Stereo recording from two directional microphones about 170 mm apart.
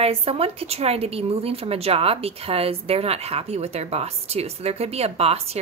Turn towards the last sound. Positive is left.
turn(degrees=-35)  # may be behind; listen again after turning